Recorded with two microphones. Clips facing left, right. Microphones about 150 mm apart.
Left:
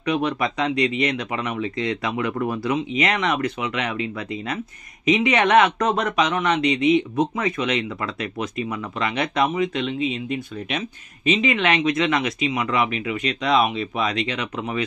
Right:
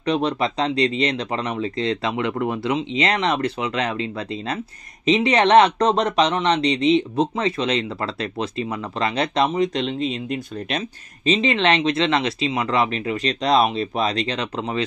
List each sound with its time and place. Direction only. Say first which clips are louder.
0.0 s speech: right 1 dB; 30° right (ahead or behind)
9.9 s speech: even; 5° left (ahead or behind)
11.2 s speech: right 2 dB; 30° right (ahead or behind)